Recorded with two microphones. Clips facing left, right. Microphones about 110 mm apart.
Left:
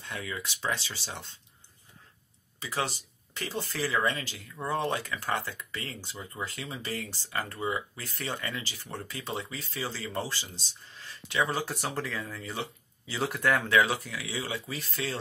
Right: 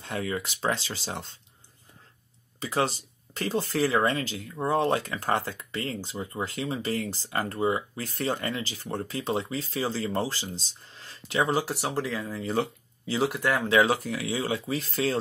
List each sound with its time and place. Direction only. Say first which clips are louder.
0.1 s speech: right 7 dB; 40° right (ahead or behind)
2.6 s speech: right 6 dB; 35° right (ahead or behind)
11.5 s speech: right 5 dB; 10° right (ahead or behind)
12.4 s speech: right 9 dB; 45° right (ahead or behind)
13.2 s speech: right 1 dB; 5° right (ahead or behind)
13.7 s speech: right 3 dB; 40° right (ahead or behind)